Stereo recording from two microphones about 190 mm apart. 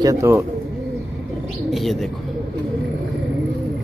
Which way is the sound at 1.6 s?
Centre (ahead or behind).